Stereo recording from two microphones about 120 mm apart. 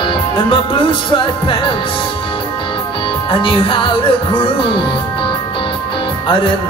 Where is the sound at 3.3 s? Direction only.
45° left (ahead or behind).